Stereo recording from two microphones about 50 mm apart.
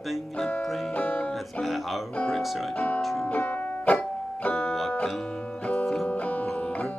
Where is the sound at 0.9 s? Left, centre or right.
Left.